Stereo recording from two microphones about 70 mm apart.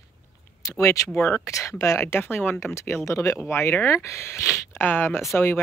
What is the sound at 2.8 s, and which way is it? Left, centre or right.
Speech, left.